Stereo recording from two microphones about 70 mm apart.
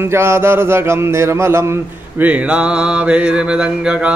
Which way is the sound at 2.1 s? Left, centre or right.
Centre.